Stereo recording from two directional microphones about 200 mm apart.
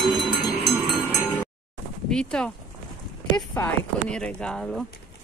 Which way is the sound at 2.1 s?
5° left (ahead or behind).